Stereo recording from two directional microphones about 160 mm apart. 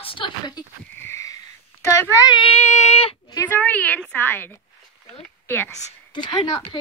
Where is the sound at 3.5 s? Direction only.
10° left (ahead or behind).